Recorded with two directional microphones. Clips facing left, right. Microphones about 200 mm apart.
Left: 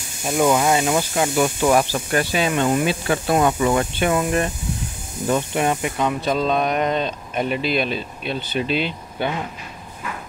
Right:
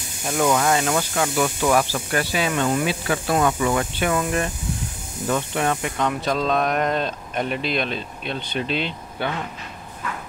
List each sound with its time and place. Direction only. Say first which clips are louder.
0.3 s speech: left 2 dB; 15° left (ahead or behind)